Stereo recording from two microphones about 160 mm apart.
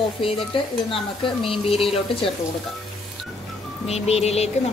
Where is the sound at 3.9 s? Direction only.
40° left (ahead or behind).